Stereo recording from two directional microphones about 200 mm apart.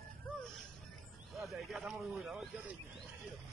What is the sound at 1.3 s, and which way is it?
Speech, centre (ahead or behind).